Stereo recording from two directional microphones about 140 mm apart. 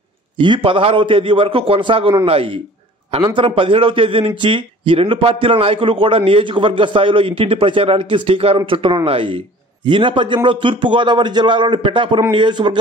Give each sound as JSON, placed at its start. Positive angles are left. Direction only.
{"t": 0.4, "sound": "a man's voice", "side_deg": -35}